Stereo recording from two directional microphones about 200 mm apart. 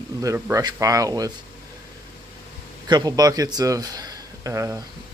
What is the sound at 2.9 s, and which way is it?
Speech, 20° right (ahead or behind).